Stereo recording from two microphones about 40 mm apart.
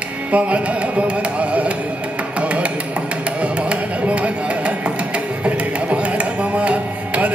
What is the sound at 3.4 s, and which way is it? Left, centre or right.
Carnatic music, right.